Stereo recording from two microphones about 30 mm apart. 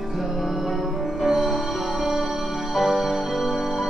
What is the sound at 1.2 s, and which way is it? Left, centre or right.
Music, centre.